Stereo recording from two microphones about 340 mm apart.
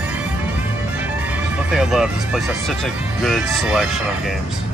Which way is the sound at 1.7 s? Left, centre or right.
Centre.